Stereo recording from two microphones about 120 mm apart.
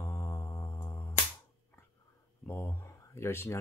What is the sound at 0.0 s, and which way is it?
Music, 20° left (ahead or behind).